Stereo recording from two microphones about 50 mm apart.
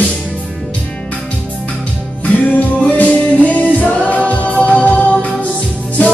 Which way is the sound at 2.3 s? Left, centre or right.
Left.